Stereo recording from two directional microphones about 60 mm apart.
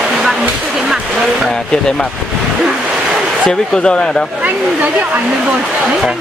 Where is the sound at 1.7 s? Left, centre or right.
Centre.